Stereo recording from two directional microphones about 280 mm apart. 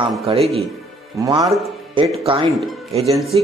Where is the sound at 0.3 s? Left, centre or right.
Centre.